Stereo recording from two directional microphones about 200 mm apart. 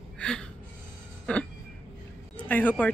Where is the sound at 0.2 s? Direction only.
5° left (ahead or behind).